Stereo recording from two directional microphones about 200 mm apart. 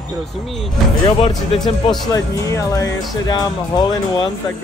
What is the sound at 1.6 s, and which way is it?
Speech, 20° left (ahead or behind).